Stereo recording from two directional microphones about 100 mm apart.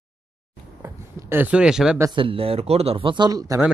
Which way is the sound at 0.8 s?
30° right (ahead or behind).